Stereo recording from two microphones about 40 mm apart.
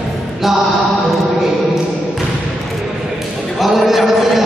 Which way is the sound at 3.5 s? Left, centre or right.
Centre.